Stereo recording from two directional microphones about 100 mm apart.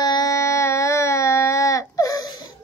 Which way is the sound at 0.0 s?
40° left (ahead or behind).